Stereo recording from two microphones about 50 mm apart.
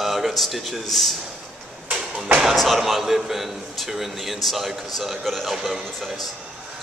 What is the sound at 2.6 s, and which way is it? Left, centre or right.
A man's voice, centre.